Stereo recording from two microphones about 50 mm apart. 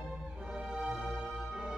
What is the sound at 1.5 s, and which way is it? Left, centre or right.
Music, centre.